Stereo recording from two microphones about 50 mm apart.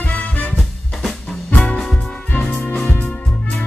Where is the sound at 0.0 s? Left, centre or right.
Left.